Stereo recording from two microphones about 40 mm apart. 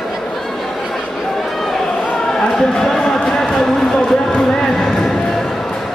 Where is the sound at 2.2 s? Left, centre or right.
Centre.